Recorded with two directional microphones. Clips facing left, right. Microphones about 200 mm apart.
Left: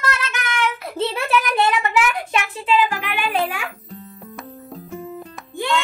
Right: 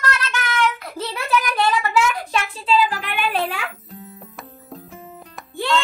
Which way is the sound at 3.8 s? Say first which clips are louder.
Left 1 dB; centre (ahead or behind).